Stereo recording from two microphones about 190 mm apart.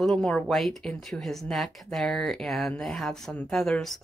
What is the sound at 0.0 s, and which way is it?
Speech, 5° left (ahead or behind).